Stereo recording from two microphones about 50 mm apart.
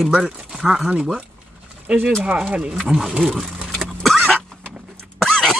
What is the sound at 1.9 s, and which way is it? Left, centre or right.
Speech, right.